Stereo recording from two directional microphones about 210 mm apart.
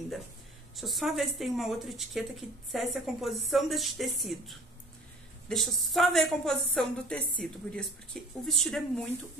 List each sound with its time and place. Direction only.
0.7 s a woman's voice: centre (ahead or behind)